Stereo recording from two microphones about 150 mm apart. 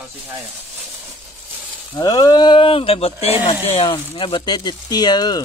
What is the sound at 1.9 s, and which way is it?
Speech, 30° left (ahead or behind).